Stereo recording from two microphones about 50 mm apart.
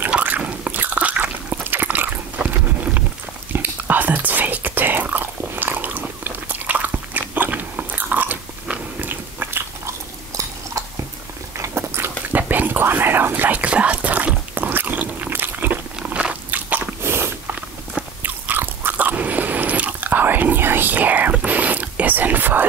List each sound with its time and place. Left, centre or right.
0.4 s a sound: right
1.9 s dog: right
3.5 s whispering: right
9.0 s biting: right
9.8 s a sound: right
11.5 s biting: right
12.3 s whispering: right
13.6 s biting: right
16.1 s biting: centre
16.4 s biting: right
17.0 s a sound: right
18.2 s biting: right
21.5 s whispering: right